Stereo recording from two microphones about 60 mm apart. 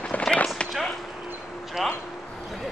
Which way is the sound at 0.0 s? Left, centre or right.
Centre.